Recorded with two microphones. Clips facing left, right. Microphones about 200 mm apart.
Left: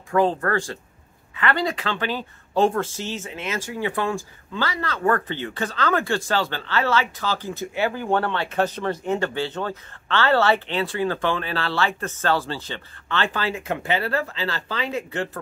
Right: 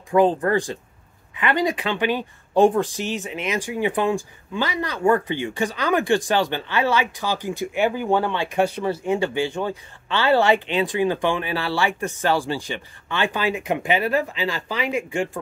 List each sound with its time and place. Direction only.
0.1 s speech: 15° right (ahead or behind)